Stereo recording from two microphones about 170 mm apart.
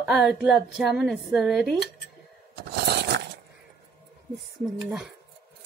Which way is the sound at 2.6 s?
75° right (ahead or behind).